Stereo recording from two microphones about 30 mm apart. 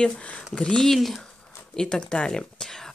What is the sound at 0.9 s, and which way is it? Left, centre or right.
Speech, centre.